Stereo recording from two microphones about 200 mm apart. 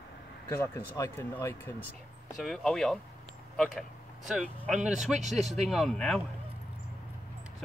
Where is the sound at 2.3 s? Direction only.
Centre (ahead or behind).